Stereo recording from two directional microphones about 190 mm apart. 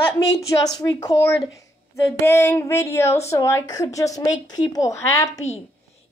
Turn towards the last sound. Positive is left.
turn(degrees=35)  # may be behind; listen again after turning